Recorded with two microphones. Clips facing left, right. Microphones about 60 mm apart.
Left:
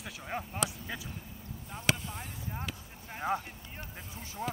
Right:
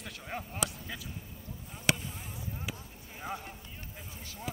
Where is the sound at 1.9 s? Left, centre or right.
Centre.